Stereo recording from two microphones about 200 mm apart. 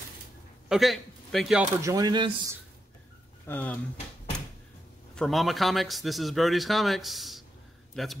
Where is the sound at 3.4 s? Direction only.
10° left (ahead or behind).